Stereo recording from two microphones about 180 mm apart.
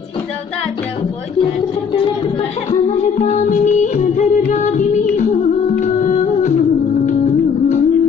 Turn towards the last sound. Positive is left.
turn(degrees=40)  # may be behind; listen again after turning